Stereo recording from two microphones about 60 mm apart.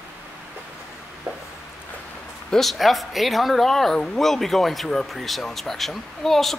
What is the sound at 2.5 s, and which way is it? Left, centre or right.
Speech, centre.